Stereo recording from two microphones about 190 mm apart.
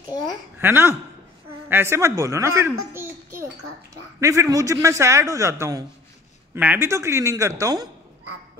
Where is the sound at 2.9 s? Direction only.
10° right (ahead or behind).